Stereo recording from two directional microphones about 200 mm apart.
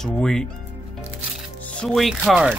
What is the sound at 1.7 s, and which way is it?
Speech, 5° left (ahead or behind).